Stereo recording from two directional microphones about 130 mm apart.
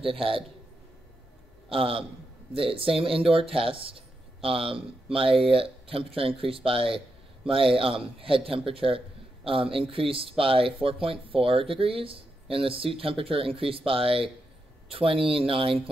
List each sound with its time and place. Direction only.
0.0 s speech: 45° right (ahead or behind)
1.7 s speech: 45° right (ahead or behind)